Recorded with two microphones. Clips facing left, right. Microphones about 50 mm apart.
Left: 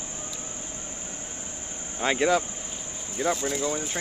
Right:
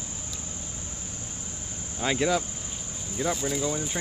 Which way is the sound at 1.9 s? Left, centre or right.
Centre.